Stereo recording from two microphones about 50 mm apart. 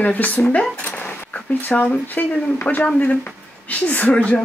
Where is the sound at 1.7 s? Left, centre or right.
Left.